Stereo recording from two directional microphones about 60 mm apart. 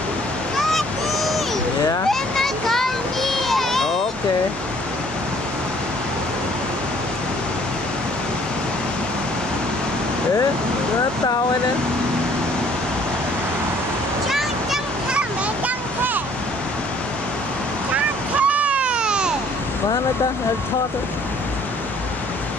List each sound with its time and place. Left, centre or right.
0.6 s a sound: centre
2.0 s children playing: centre
17.9 s waves: right